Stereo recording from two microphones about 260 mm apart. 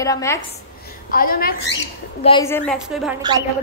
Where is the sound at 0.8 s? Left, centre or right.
Left.